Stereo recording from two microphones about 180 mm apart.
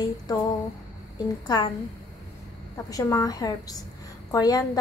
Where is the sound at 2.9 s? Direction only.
20° left (ahead or behind).